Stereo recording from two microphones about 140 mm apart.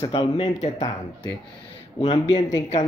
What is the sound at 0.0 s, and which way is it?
Speech, 35° left (ahead or behind).